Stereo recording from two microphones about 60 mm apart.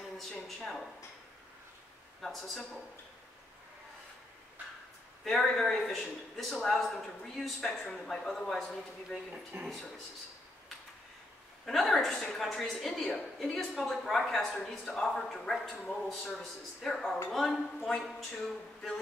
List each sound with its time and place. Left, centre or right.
0.2 s a sound: centre
2.2 s a woman's voice: centre
5.2 s a woman's voice: centre
9.5 s speech: right
11.6 s a woman's voice: centre
15.7 s a man's voice: left
16.3 s a woman's voice: centre